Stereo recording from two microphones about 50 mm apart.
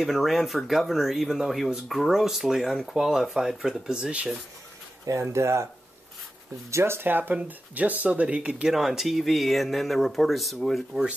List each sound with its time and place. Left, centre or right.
0.0 s speech: centre
5.1 s speech: right
6.7 s speech: right
7.0 s speech: right
8.6 s speech: centre